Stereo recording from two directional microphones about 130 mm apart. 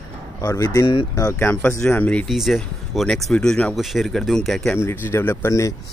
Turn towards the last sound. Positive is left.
turn(degrees=25)  # may be behind; listen again after turning